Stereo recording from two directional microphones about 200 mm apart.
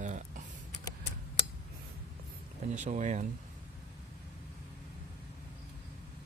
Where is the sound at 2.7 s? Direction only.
35° right (ahead or behind).